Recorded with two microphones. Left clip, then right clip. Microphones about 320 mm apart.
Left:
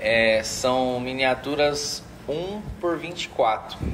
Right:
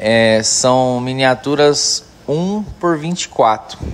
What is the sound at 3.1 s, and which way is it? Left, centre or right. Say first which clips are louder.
Speech: right 8 dB; right.